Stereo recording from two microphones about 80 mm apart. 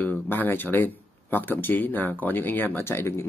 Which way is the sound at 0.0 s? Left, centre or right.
Left.